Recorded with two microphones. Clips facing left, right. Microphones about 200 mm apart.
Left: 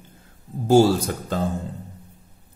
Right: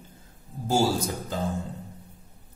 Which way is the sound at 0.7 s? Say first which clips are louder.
Left 8 dB; 60° left (ahead or behind).